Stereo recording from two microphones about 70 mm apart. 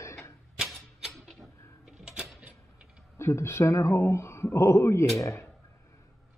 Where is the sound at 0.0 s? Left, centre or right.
Left.